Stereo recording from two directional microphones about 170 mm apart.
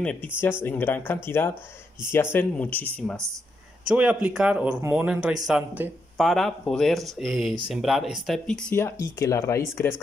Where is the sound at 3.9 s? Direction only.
5° right (ahead or behind).